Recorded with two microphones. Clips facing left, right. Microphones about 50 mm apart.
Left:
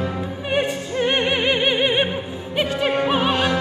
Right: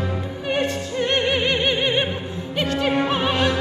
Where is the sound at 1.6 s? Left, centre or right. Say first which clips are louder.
Left 2 dB; centre.